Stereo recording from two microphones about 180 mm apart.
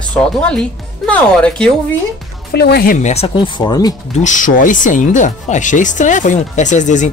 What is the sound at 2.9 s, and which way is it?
Speech, 35° left (ahead or behind).